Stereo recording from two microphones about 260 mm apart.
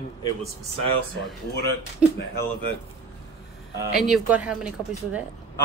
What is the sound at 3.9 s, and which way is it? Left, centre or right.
Speech, centre.